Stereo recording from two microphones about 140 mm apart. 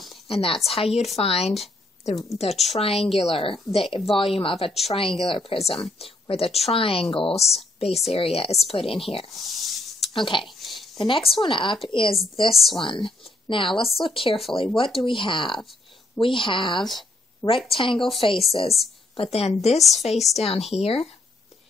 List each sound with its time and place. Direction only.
0.3 s a woman's voice: 40° left (ahead or behind)
9.3 s speech: centre (ahead or behind)
9.9 s speech: 40° left (ahead or behind)
10.6 s a sound: centre (ahead or behind)
11.0 s a woman's voice: 35° left (ahead or behind)
12.4 s speech: centre (ahead or behind)
12.7 s a woman's voice: 35° left (ahead or behind)
17.4 s a woman's voice: 15° left (ahead or behind)
17.7 s a woman's voice: 35° left (ahead or behind)